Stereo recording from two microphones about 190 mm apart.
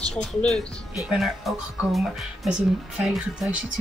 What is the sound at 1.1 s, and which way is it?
Speech, centre (ahead or behind).